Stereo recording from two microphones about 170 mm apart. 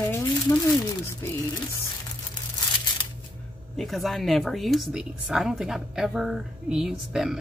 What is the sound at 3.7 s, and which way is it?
Speech, centre (ahead or behind).